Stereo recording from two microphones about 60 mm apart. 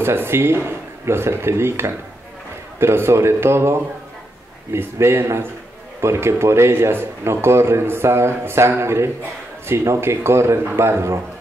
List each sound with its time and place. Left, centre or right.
0.0 s a man's voice: right
4.9 s a man's voice: right